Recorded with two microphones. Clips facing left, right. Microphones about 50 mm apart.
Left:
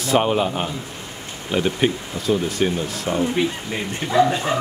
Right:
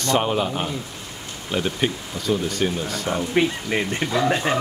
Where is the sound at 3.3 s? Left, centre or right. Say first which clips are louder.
Right 2 dB; right.